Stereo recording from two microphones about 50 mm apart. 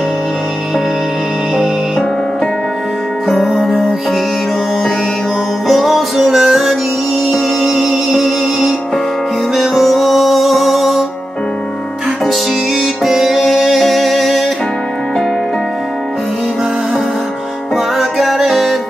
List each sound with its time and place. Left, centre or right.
3.3 s music: centre
5.7 s music: centre
13.0 s music: centre
17.7 s music: centre